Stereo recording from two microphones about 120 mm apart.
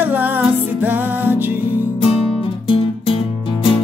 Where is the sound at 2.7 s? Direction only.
50° left (ahead or behind).